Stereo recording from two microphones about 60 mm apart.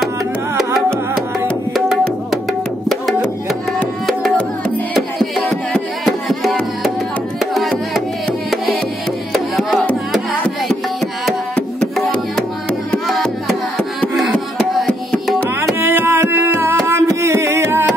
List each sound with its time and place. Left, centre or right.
1.7 s tabla: centre
2.9 s music: centre
4.9 s music: centre
10.7 s music: centre
13.0 s music: centre
15.8 s music: right